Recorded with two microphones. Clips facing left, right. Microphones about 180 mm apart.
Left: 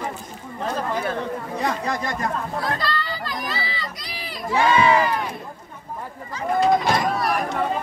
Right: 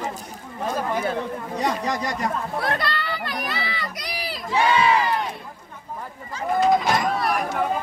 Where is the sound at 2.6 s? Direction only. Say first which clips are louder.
Even; 65° right (ahead or behind).